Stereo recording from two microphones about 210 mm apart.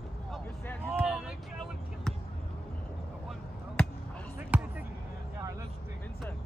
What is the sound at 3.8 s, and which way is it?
Basketball bounce, 5° left (ahead or behind).